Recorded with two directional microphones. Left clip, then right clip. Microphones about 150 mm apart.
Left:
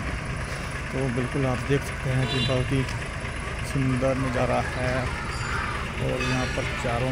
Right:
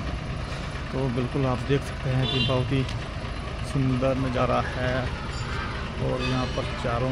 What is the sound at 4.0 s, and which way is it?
Speech, 5° right (ahead or behind).